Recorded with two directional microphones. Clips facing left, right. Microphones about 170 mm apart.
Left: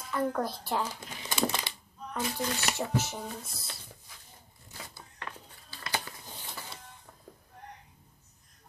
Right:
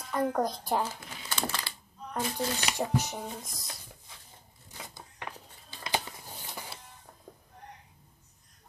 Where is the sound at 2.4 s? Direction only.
35° right (ahead or behind).